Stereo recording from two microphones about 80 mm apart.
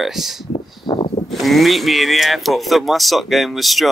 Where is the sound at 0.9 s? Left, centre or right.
Left.